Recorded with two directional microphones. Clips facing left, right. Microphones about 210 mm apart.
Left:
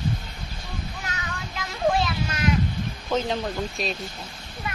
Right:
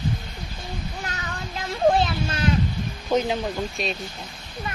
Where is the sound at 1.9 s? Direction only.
30° right (ahead or behind).